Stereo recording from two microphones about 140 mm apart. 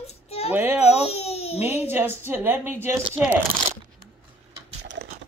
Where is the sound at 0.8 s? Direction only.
50° left (ahead or behind).